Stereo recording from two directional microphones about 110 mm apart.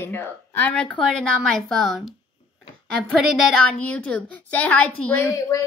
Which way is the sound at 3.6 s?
10° left (ahead or behind).